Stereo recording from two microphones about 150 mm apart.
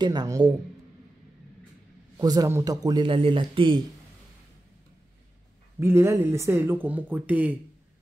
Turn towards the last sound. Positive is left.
turn(degrees=-10)  # may be behind; listen again after turning